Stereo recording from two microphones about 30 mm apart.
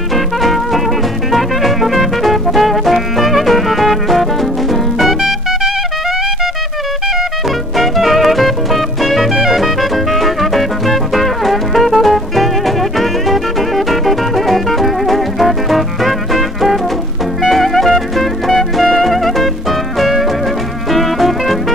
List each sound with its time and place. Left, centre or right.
0.1 s music: centre
7.7 s music: centre
9.3 s music: centre
9.6 s music: centre